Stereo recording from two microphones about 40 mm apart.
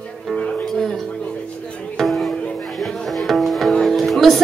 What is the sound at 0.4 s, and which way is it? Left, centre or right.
Music, left.